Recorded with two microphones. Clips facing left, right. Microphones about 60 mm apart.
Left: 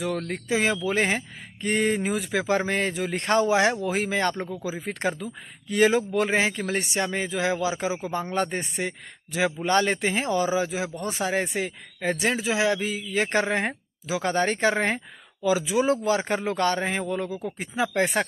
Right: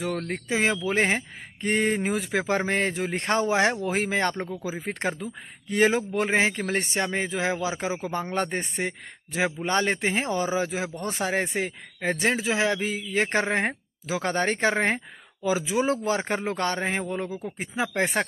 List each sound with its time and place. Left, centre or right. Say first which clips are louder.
0.0 s a man's voice: left 1 dB; right